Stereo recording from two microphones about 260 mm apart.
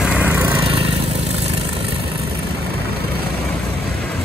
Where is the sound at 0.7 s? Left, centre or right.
Right.